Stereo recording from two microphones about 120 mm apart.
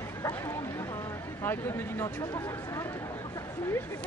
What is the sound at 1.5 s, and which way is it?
Speech, 25° left (ahead or behind).